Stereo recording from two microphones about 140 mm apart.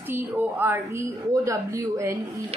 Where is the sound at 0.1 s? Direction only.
15° right (ahead or behind).